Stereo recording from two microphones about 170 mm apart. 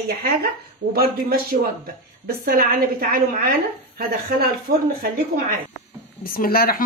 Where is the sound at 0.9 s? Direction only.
65° right (ahead or behind).